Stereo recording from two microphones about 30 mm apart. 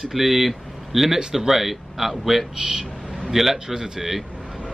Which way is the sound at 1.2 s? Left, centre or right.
Right.